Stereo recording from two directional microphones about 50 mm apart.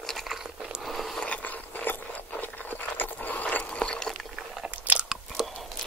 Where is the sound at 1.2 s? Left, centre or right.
Left.